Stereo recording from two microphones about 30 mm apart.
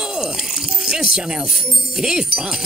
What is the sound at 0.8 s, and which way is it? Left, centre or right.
Music, centre.